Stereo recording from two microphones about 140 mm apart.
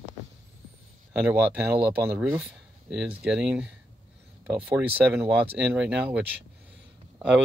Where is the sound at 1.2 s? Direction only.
10° right (ahead or behind).